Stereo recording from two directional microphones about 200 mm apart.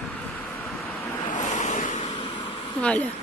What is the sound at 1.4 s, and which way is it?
Waves, 35° left (ahead or behind).